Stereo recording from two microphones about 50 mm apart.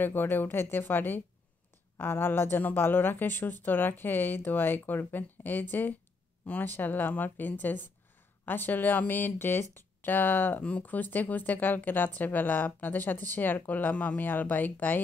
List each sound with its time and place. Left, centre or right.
0.0 s speech: left